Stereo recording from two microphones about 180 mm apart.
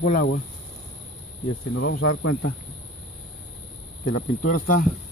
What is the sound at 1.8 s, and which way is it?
Speech, 90° left.